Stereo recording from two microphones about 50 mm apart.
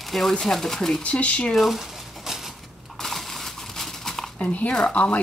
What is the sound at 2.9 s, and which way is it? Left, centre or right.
Dog, centre.